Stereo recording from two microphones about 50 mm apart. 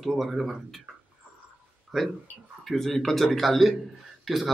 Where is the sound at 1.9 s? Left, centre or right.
Centre.